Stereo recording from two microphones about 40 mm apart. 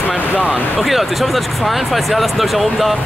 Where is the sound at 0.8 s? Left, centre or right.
Centre.